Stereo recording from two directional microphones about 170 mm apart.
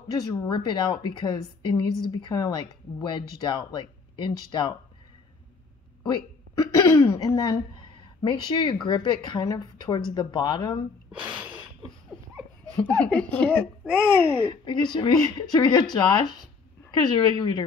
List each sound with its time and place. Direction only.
0.1 s speech: 25° left (ahead or behind)
6.0 s speech: 20° left (ahead or behind)
11.1 s gasp: 30° right (ahead or behind)
12.7 s speech: 5° left (ahead or behind)
14.5 s speech: 25° left (ahead or behind)